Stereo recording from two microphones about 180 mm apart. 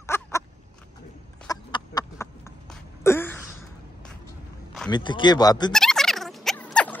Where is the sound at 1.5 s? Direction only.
25° left (ahead or behind).